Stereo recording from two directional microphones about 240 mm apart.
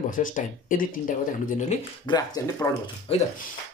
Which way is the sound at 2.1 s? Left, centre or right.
Centre.